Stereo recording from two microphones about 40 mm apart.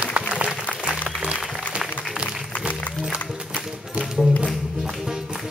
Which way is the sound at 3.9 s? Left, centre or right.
Centre.